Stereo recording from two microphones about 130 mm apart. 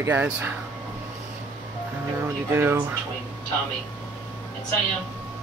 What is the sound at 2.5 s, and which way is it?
Speech, 20° right (ahead or behind).